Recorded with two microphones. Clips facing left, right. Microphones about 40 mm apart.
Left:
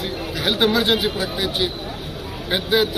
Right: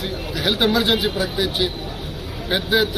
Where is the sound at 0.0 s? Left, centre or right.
Left.